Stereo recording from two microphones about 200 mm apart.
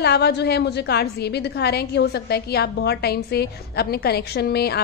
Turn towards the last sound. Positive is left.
turn(degrees=55)  # may be behind; listen again after turning